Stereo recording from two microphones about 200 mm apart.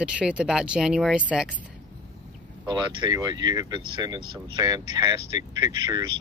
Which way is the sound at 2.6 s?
20° right (ahead or behind).